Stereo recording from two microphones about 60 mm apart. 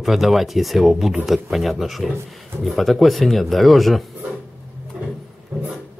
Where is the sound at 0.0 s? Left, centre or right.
Centre.